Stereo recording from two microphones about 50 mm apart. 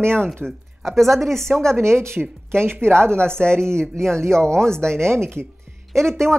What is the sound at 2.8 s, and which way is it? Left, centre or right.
Speech, centre.